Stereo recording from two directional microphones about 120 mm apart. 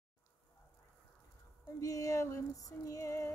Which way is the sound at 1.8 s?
25° left (ahead or behind).